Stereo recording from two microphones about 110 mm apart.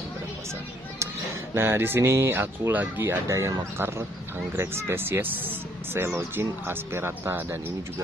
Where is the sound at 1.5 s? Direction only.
20° right (ahead or behind).